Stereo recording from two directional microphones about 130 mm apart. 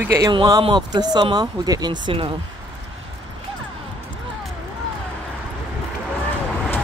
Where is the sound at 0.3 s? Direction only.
35° right (ahead or behind).